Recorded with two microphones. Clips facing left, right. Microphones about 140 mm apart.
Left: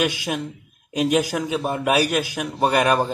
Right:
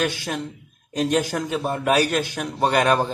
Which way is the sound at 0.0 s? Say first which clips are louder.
Left 2 dB; 10° left (ahead or behind).